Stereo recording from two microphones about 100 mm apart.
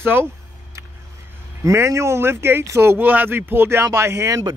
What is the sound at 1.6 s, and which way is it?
Speech, 30° right (ahead or behind).